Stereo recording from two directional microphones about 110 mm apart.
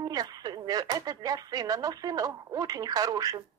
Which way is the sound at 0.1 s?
35° right (ahead or behind).